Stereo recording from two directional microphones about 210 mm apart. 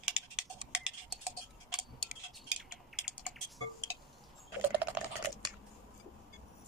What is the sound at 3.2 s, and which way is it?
Typing, centre (ahead or behind).